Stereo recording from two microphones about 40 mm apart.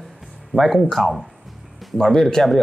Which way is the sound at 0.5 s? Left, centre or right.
Centre.